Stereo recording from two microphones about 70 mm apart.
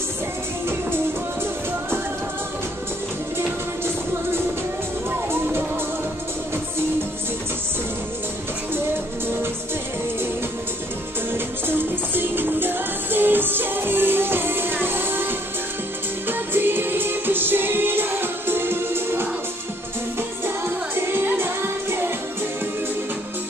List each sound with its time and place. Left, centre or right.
3.8 s music: right
11.3 s music: right
20.4 s music: right